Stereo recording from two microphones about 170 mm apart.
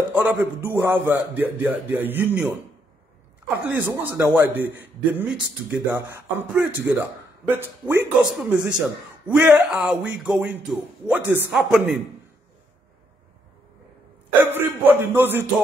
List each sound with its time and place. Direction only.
0.1 s a man's voice: 10° right (ahead or behind)
3.6 s a man's voice: 10° right (ahead or behind)
14.4 s a man's voice: 10° right (ahead or behind)